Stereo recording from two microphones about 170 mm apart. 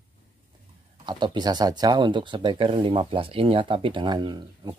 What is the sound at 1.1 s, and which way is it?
Speech, 25° right (ahead or behind).